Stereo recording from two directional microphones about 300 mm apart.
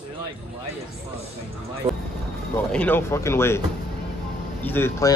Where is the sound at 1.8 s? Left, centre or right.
Centre.